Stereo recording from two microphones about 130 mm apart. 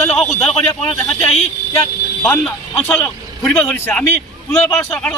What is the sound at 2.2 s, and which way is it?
A man's voice, 10° left (ahead or behind).